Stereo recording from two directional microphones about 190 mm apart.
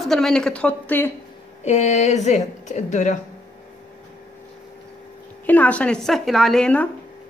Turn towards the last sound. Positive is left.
turn(degrees=5)  # may be behind; listen again after turning